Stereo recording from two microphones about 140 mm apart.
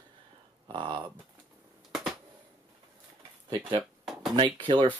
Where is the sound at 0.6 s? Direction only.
35° right (ahead or behind).